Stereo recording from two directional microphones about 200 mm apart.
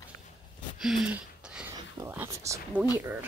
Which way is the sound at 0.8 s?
Centre (ahead or behind).